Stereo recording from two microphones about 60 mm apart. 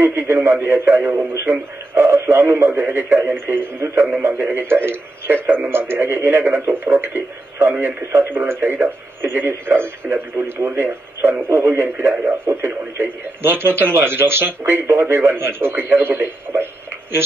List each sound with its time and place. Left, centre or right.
0.0 s speech: right